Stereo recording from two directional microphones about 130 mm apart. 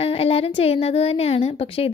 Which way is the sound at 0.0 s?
50° left (ahead or behind).